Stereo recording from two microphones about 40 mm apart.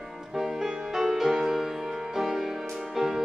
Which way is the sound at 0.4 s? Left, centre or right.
Centre.